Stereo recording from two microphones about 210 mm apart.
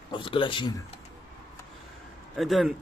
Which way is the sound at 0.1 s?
25° left (ahead or behind).